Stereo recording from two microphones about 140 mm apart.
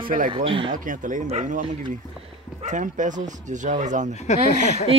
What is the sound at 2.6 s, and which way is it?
Speech, 65° right (ahead or behind).